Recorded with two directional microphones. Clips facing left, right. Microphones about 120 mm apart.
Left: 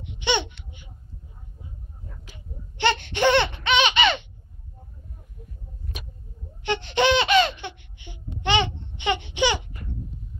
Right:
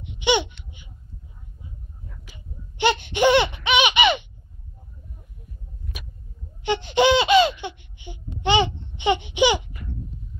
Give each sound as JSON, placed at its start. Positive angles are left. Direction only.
{"t": 0.2, "sound": "babbling", "side_deg": -10}
{"t": 2.8, "sound": "baby laughter", "side_deg": -10}
{"t": 6.6, "sound": "baby laughter", "side_deg": -15}
{"t": 7.6, "sound": "laughter", "side_deg": -20}
{"t": 8.4, "sound": "babbling", "side_deg": -15}